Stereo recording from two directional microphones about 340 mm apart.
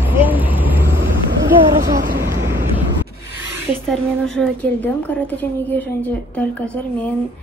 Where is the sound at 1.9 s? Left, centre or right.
Right.